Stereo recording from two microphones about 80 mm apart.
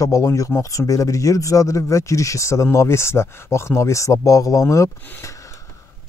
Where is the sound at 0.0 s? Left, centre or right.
Left.